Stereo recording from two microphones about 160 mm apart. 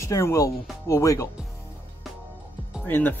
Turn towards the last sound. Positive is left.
turn(degrees=10)  # may be behind; listen again after turning